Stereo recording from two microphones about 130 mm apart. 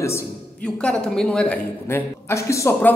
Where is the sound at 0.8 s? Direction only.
5° left (ahead or behind).